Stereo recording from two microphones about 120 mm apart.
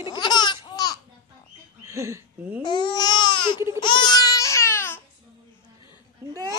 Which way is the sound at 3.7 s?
40° left (ahead or behind).